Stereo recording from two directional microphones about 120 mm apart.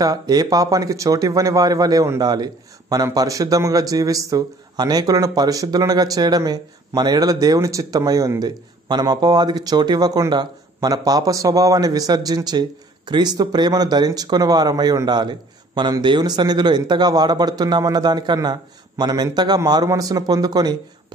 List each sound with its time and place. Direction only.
0.0 s speech: 30° right (ahead or behind)